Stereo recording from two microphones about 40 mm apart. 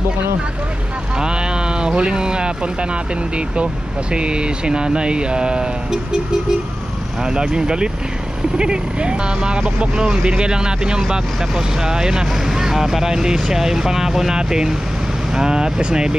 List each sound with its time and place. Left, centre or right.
1.1 s speech: right
7.2 s speech: centre